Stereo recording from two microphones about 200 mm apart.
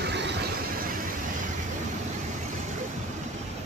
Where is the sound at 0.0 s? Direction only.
60° right (ahead or behind).